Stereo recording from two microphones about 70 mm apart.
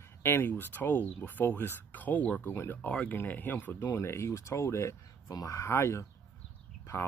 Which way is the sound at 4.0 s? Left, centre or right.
Left.